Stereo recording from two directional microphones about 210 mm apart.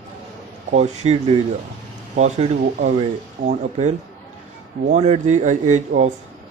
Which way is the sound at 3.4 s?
40° right (ahead or behind).